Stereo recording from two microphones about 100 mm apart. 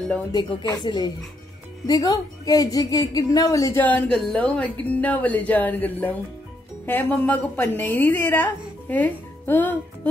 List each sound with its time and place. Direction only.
0.3 s speech: 50° left (ahead or behind)
1.9 s a woman's voice: 35° left (ahead or behind)
3.8 s a woman's voice: 15° left (ahead or behind)